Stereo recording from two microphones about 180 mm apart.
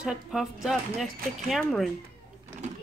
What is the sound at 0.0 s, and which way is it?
Speech, 5° right (ahead or behind).